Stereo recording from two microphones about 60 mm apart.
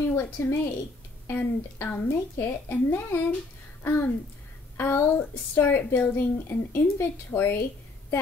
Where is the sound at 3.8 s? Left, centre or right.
Left.